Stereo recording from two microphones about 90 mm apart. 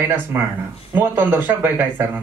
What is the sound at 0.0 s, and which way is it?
Speech, 25° right (ahead or behind).